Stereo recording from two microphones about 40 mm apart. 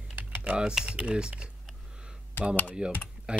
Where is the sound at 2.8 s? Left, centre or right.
Right.